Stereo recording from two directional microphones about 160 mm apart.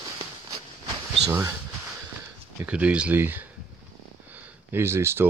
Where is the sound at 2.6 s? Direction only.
10° right (ahead or behind).